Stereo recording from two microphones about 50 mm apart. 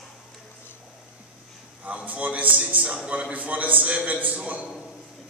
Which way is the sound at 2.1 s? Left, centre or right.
Right.